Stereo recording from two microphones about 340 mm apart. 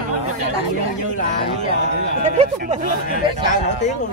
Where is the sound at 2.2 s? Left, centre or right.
Centre.